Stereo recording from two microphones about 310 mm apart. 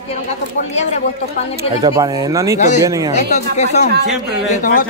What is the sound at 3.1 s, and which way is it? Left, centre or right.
Speech, left.